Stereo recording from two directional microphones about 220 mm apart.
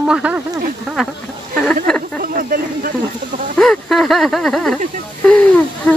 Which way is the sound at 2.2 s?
40° right (ahead or behind).